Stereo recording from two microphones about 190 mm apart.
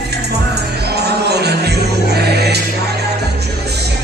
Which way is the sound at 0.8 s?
60° right (ahead or behind).